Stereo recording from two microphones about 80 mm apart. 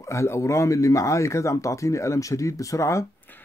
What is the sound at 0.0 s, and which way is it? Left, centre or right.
Speech, left.